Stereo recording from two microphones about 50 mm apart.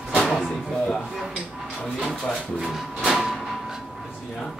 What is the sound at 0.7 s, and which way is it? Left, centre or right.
Speech, centre.